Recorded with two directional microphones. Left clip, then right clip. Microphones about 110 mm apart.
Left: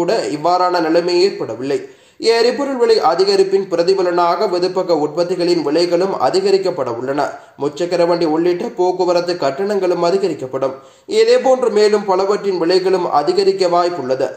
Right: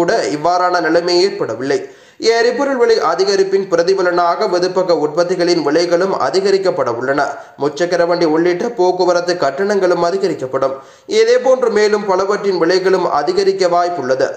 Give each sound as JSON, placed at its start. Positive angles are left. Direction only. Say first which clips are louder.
{"t": 0.0, "sound": "a man's voice", "louder": "right 2 dB", "side_deg": 15}